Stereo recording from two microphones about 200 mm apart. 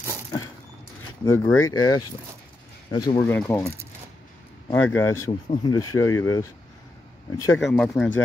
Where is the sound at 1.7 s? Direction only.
20° left (ahead or behind).